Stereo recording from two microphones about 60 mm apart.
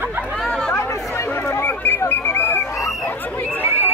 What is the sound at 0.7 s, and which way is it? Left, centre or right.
Chatter, left.